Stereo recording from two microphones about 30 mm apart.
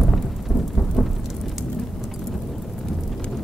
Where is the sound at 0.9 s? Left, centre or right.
Centre.